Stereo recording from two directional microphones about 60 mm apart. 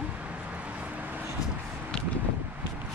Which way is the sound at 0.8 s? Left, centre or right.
Right.